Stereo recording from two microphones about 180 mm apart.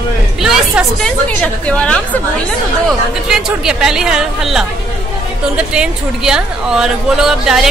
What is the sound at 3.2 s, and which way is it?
Speech, 5° right (ahead or behind).